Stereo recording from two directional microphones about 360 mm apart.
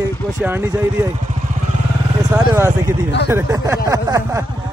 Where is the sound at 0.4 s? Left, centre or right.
Centre.